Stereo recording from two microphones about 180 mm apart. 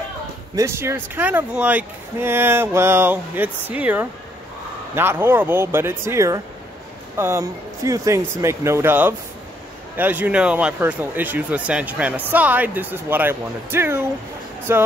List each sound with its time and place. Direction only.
0.6 s speech: 15° right (ahead or behind)